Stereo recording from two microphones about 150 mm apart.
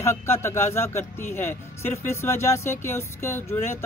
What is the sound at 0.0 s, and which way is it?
Speech, 15° left (ahead or behind).